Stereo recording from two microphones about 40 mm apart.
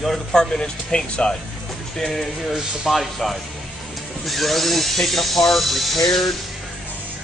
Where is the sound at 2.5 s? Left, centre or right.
Centre.